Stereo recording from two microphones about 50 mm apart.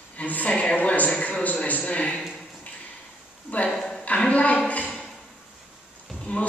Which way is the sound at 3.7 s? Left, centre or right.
Centre.